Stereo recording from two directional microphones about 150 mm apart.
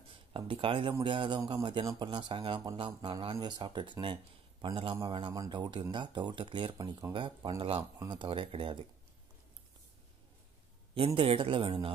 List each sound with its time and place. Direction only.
0.1 s a man's voice: 35° right (ahead or behind)
11.1 s a man's voice: 40° right (ahead or behind)